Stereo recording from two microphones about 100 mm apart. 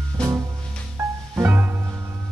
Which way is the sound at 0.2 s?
10° left (ahead or behind).